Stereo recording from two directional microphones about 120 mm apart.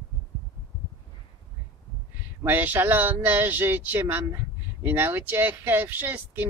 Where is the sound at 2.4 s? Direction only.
15° right (ahead or behind).